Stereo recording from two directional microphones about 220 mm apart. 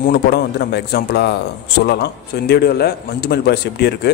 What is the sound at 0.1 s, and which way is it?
A man's voice, 45° left (ahead or behind).